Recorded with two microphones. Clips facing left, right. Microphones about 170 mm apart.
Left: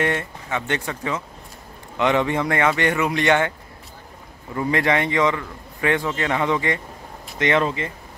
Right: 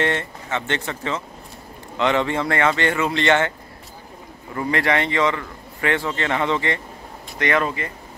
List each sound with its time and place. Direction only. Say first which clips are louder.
0.0 s a man's voice: even; 10° left (ahead or behind)
4.6 s a man's voice: left 1 dB; 20° left (ahead or behind)